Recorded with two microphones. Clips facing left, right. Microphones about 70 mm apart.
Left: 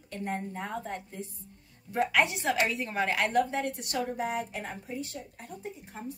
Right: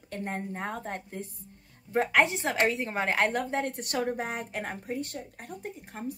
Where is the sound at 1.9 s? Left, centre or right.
Right.